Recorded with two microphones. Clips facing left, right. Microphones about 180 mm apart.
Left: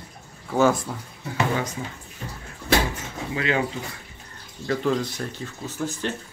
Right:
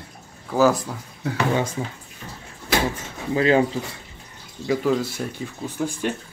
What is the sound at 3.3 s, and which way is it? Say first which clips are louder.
Speech: right 7 dB; 35° right (ahead or behind).